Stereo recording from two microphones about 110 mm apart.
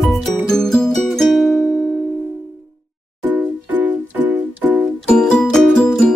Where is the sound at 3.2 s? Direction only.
15° right (ahead or behind).